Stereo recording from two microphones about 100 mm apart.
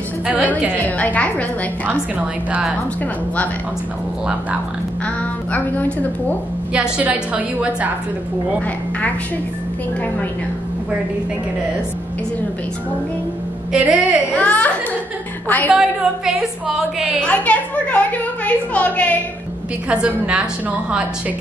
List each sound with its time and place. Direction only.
0.8 s a woman's voice: 15° left (ahead or behind)
1.9 s a woman's voice: 15° right (ahead or behind)
5.0 s a woman's voice: 15° left (ahead or behind)
6.7 s a woman's voice: 15° right (ahead or behind)
13.7 s a woman's voice: 10° right (ahead or behind)
14.3 s a woman's voice: 15° left (ahead or behind)
15.7 s a woman's voice: 5° right (ahead or behind)
17.2 s a woman's voice: 15° left (ahead or behind)
19.9 s a woman's voice: 10° right (ahead or behind)